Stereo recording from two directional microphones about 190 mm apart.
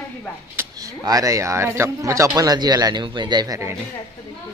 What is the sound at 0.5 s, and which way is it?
Speech, 15° right (ahead or behind).